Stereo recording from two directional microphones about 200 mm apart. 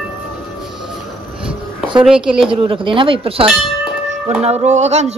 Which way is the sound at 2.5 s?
25° right (ahead or behind).